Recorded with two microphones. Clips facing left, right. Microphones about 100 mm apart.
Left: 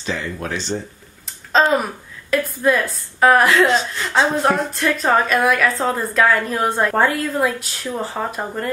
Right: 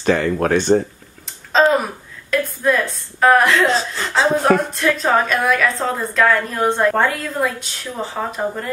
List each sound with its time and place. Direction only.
0.0 s speech: 55° right (ahead or behind)
1.2 s a sound: centre (ahead or behind)
2.3 s a woman's voice: centre (ahead or behind)